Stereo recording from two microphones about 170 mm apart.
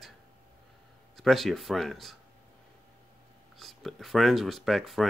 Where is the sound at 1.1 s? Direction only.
Centre (ahead or behind).